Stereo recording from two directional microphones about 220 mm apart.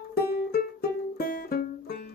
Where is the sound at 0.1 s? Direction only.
45° left (ahead or behind).